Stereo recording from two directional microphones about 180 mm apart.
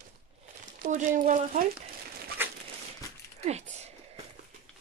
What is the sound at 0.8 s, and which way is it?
Speech, 45° right (ahead or behind).